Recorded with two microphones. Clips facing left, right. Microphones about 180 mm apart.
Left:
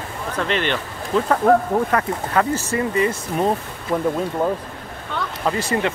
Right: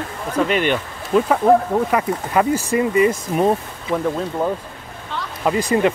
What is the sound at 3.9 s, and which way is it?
Speech, 5° left (ahead or behind).